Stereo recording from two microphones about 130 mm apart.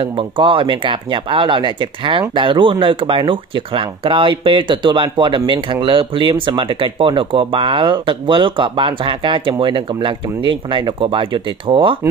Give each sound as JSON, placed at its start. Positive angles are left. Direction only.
{"t": 0.0, "sound": "speech", "side_deg": -45}